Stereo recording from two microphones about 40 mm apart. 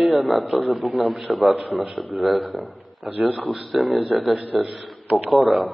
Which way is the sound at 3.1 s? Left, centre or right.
Right.